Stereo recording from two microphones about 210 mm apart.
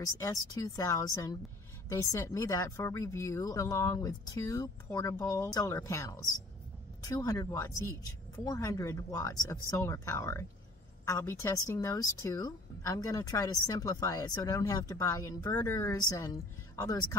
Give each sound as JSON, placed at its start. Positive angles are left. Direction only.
{"t": 0.0, "sound": "speech", "side_deg": 15}